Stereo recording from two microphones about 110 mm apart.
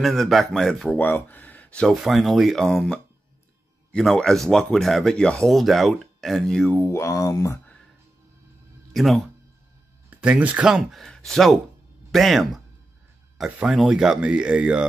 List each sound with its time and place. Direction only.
0.0 s speech: centre (ahead or behind)
0.9 s speech: 15° left (ahead or behind)
2.0 s speech: centre (ahead or behind)
6.9 s speech: 25° left (ahead or behind)
8.9 s speech: centre (ahead or behind)
10.0 s speech: 10° right (ahead or behind)
13.7 s speech: 5° right (ahead or behind)